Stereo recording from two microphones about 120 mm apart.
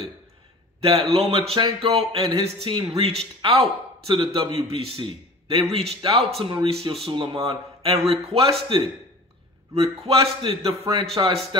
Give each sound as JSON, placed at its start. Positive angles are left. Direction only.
{"t": 0.7, "sound": "a man's voice", "side_deg": -55}
{"t": 10.0, "sound": "a man's voice", "side_deg": -50}